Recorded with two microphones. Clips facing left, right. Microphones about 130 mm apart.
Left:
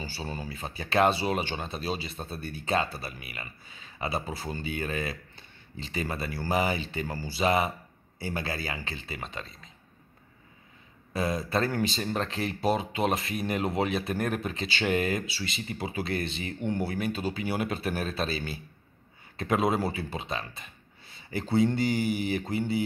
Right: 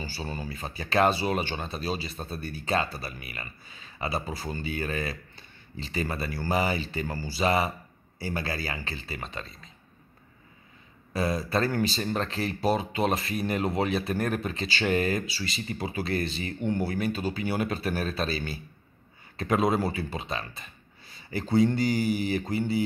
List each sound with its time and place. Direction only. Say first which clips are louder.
0.2 s speech: right 1 dB; 15° left (ahead or behind)
11.1 s speech: right 1 dB; 20° left (ahead or behind)
18.3 s speech: right 1 dB; 20° left (ahead or behind)